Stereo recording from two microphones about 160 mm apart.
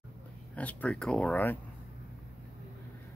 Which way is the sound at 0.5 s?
10° left (ahead or behind).